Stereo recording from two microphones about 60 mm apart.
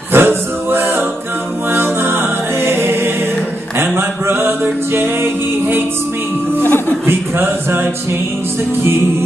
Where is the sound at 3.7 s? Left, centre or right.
Right.